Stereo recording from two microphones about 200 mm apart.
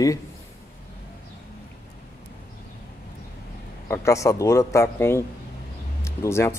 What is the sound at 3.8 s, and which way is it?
A man's voice, 15° left (ahead or behind).